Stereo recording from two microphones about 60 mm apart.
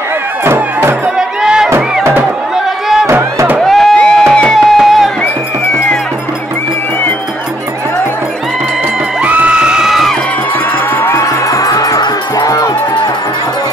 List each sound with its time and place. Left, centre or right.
1.1 s music: centre
3.1 s music: right
3.6 s a sound: centre
3.9 s music: centre
4.6 s music: centre
9.2 s music: right; by 10.1 s centre
11.0 s music: left
11.4 s music: left